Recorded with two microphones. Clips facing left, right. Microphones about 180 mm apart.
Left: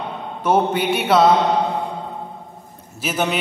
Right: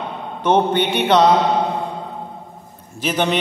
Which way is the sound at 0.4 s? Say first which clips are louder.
Right 2 dB; 10° left (ahead or behind).